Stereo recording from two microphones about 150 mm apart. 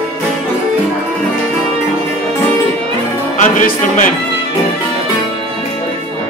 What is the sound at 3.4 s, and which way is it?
Music, 60° left (ahead or behind).